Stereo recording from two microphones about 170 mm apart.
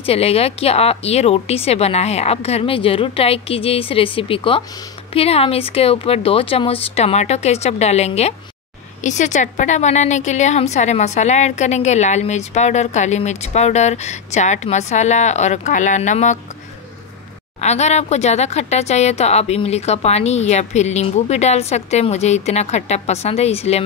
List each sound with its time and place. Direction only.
0.0 s a woman's voice: 35° left (ahead or behind)
17.6 s speech: 40° left (ahead or behind)